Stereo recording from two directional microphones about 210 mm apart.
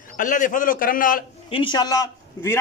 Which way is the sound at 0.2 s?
40° left (ahead or behind).